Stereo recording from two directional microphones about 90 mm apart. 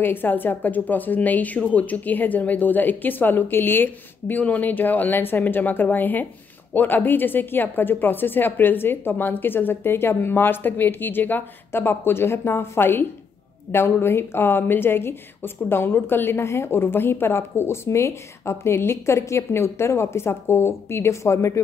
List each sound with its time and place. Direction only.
0.0 s a woman's voice: 20° left (ahead or behind)